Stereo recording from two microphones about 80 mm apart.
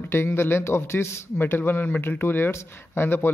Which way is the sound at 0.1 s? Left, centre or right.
Left.